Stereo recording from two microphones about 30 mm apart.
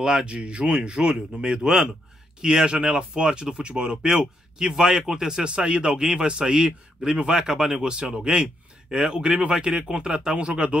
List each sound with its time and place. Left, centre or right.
0.0 s speech: right
0.7 s speech: right
2.6 s speech: right
5.4 s speech: right